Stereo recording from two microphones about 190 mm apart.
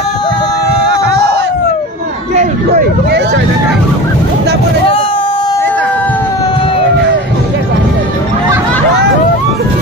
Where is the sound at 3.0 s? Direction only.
65° right (ahead or behind).